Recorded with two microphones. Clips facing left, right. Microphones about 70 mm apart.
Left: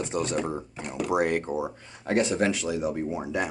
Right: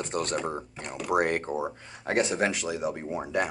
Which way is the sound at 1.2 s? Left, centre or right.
Right.